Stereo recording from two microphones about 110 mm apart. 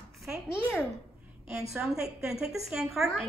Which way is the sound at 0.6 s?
20° left (ahead or behind).